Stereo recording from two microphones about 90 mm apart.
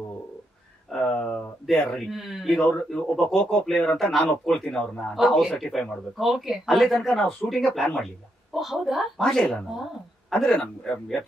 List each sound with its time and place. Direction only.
0.8 s a sound: 10° left (ahead or behind)
1.2 s speech: 5° left (ahead or behind)
9.4 s speech: 15° left (ahead or behind)
10.3 s speech: 5° left (ahead or behind)